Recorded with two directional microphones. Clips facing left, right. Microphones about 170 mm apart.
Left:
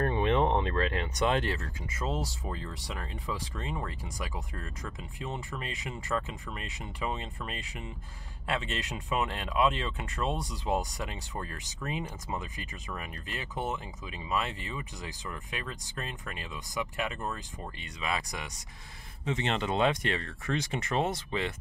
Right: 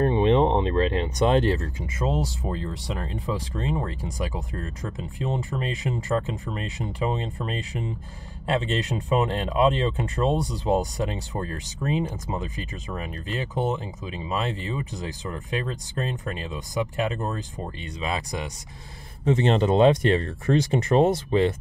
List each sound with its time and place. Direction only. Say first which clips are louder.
0.0 s speech: right 7 dB; 25° right (ahead or behind)
19.2 s speech: right 10 dB; 40° right (ahead or behind)